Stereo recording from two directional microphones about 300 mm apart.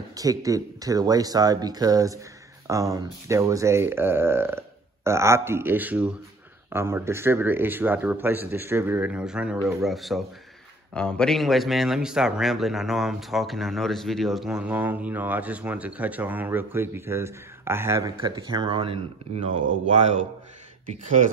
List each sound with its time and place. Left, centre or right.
0.1 s a man's voice: centre